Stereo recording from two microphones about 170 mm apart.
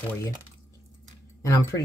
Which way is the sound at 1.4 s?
15° left (ahead or behind).